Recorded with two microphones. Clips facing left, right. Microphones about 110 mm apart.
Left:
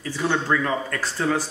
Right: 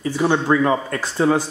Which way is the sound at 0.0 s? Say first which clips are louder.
Right 6 dB; 25° right (ahead or behind).